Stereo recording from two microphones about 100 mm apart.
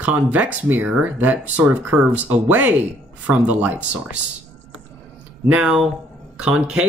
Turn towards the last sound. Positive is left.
turn(degrees=-10)  # may be behind; listen again after turning